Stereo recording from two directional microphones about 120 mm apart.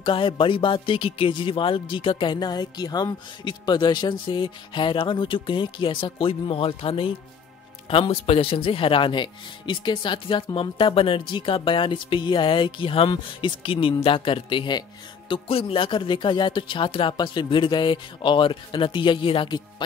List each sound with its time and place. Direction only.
0.0 s speech: 45° left (ahead or behind)